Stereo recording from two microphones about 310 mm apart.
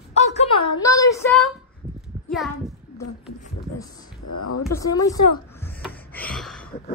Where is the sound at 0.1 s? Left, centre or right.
Left; by 1.5 s centre.